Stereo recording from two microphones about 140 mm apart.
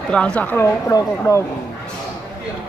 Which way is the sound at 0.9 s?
25° left (ahead or behind).